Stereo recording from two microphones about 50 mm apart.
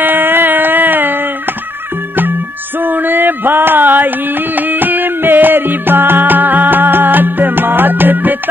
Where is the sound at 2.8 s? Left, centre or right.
Right.